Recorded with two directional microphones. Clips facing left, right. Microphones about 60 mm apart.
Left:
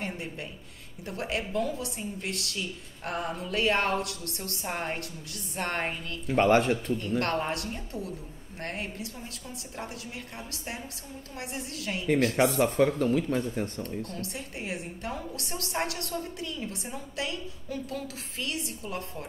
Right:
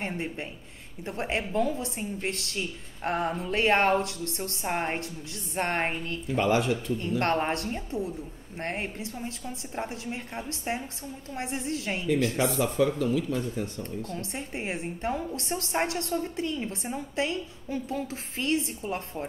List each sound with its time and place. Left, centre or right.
0.0 s a sound: right
1.0 s a woman's voice: right
6.2 s speech: left
7.0 s a woman's voice: right
12.4 s speech: left
14.2 s a woman's voice: right